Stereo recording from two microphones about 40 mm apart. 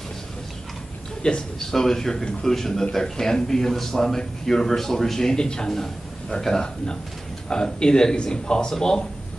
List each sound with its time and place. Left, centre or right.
1.2 s speech: left
1.6 s speech: centre